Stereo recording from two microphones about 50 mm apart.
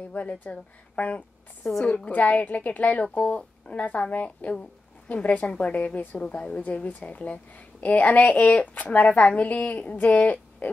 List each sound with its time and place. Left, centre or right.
0.1 s a woman's voice: left